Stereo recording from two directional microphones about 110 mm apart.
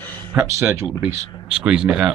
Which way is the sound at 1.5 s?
5° right (ahead or behind).